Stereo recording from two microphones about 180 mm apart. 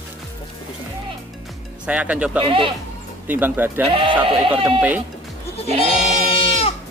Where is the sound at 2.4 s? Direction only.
30° right (ahead or behind).